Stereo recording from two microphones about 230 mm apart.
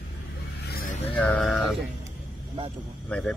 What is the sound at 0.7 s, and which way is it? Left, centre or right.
Vehicle, left.